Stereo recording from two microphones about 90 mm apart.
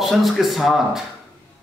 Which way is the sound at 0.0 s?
Centre (ahead or behind).